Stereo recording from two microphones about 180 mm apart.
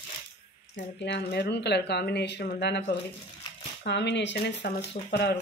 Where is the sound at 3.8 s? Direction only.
75° left (ahead or behind).